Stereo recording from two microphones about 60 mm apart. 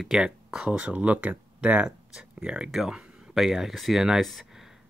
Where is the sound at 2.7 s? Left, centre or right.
Centre.